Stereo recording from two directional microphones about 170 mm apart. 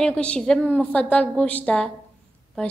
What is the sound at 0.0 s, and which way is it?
A woman's voice, 5° left (ahead or behind).